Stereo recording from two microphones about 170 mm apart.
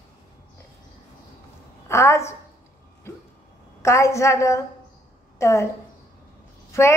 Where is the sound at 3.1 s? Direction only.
15° left (ahead or behind).